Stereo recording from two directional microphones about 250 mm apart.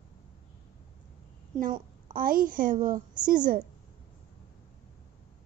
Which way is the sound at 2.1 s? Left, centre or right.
Right.